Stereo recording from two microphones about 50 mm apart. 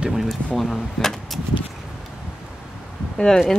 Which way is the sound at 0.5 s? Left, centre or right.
Centre.